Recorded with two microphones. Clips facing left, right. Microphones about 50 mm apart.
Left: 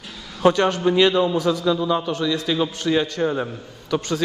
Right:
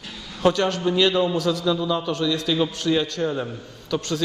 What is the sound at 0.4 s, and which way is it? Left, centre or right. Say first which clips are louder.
A man's voice: left 3 dB; centre.